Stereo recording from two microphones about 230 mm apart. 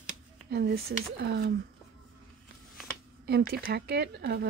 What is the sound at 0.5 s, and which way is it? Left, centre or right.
Speech, right.